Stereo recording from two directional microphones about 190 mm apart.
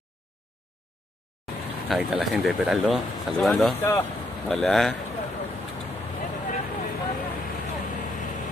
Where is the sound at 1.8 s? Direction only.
5° right (ahead or behind).